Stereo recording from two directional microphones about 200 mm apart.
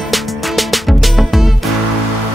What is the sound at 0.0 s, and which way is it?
Music, centre (ahead or behind).